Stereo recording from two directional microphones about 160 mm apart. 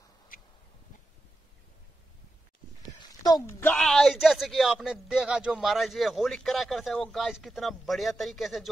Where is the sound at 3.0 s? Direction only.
25° left (ahead or behind).